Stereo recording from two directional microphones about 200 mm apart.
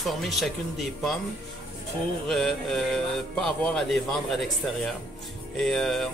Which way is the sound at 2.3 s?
Centre (ahead or behind).